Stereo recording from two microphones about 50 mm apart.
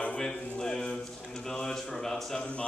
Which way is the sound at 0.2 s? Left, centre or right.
Centre.